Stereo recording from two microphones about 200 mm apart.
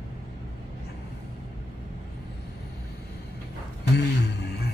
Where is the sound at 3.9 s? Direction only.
55° left (ahead or behind).